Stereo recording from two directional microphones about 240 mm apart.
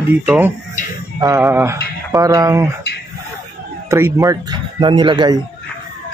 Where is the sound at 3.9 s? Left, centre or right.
Centre.